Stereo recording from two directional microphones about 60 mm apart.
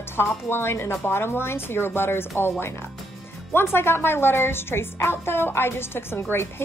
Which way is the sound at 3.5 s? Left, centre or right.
Left.